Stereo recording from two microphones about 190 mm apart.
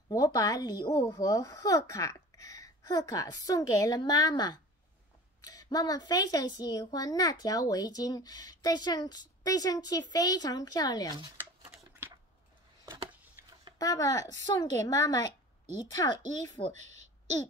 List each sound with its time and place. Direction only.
0.1 s speech: 20° left (ahead or behind)
12.8 s a sound: 20° right (ahead or behind)
13.7 s speech: 20° left (ahead or behind)
16.7 s a woman's voice: 35° right (ahead or behind)